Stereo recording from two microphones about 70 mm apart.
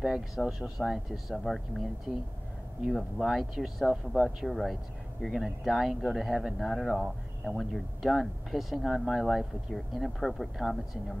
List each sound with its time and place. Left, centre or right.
0.0 s speech: centre
2.1 s speech: centre
2.8 s speech: centre